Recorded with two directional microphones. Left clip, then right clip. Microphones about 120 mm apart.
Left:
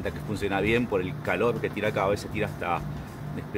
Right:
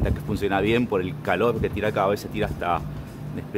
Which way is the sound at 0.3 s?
20° right (ahead or behind).